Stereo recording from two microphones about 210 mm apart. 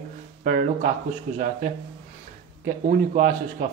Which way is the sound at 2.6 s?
40° right (ahead or behind).